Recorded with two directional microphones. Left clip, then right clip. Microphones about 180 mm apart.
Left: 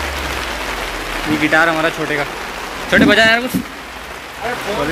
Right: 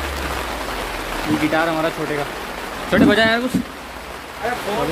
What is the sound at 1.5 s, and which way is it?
Speech, centre (ahead or behind).